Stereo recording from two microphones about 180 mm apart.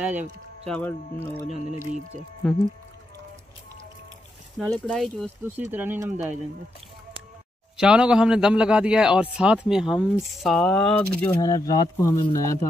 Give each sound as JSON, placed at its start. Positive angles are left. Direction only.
{"t": 0.0, "sound": "speech", "side_deg": -10}
{"t": 0.7, "sound": "speech", "side_deg": 10}
{"t": 1.7, "sound": "speech", "side_deg": -45}
{"t": 4.6, "sound": "a man's voice", "side_deg": 0}
{"t": 5.4, "sound": "speech", "side_deg": -10}
{"t": 7.7, "sound": "a man's voice", "side_deg": -5}
{"t": 11.4, "sound": "speech", "side_deg": 20}